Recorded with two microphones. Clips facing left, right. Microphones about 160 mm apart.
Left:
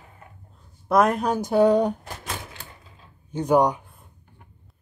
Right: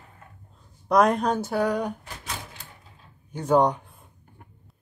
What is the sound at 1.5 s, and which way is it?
Speech, 25° left (ahead or behind).